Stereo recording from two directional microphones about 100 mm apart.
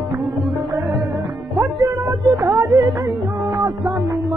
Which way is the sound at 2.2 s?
40° right (ahead or behind).